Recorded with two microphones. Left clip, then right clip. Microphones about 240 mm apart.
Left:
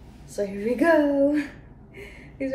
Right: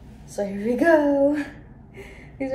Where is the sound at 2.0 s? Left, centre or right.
Centre.